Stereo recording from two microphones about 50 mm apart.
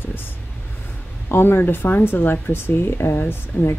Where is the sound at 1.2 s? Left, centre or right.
Left.